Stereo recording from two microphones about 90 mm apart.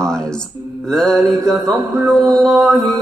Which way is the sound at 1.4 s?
35° right (ahead or behind).